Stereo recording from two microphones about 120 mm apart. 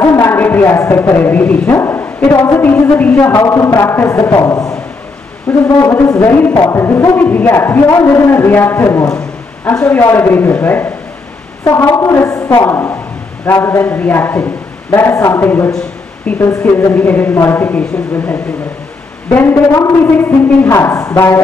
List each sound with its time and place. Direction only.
0.0 s a man's voice: 25° left (ahead or behind)
3.2 s music: 25° left (ahead or behind)
9.8 s a woman's voice: 15° left (ahead or behind)
11.6 s a sound: 20° left (ahead or behind)
12.0 s music: 25° left (ahead or behind)
16.3 s a woman's voice: 20° left (ahead or behind)
19.2 s music: 20° left (ahead or behind)